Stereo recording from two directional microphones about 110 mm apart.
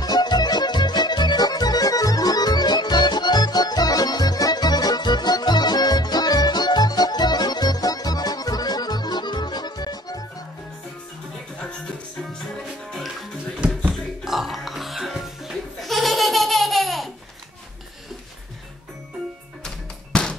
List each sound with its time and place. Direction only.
0.0 s music: 40° left (ahead or behind)
13.8 s music: 5° right (ahead or behind)
19.6 s music: 5° left (ahead or behind)